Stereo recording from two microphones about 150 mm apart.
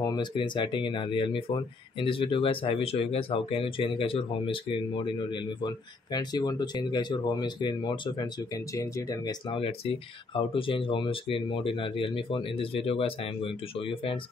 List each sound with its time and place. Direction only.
0.0 s speech: 30° left (ahead or behind)